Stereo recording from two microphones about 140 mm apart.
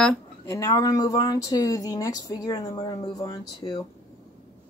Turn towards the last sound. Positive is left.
turn(degrees=25)  # may be behind; listen again after turning